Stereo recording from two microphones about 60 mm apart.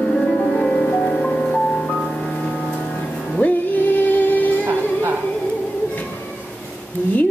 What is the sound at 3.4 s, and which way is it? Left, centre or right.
Music, left.